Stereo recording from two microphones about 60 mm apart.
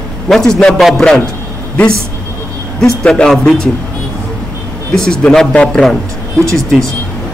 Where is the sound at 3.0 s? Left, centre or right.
Centre.